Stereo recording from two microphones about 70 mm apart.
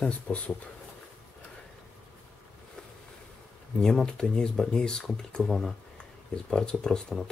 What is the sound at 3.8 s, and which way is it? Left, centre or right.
Speech, centre.